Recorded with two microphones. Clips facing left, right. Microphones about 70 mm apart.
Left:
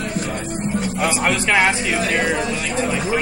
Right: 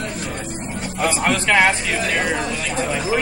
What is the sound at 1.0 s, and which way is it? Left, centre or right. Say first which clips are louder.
Speech: right 2 dB; centre.